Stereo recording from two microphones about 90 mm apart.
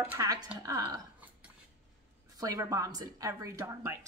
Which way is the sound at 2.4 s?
40° right (ahead or behind).